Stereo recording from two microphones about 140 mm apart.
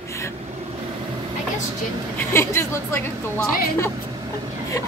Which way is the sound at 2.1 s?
20° left (ahead or behind).